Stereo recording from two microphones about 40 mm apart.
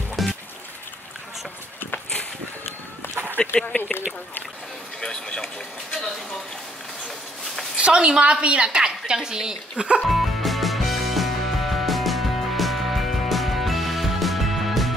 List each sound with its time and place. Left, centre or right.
0.1 s music: centre
3.3 s speech: left
7.7 s a woman's voice: right
10.1 s music: centre